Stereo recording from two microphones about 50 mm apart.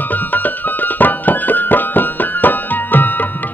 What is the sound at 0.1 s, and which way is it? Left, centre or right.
Music, left.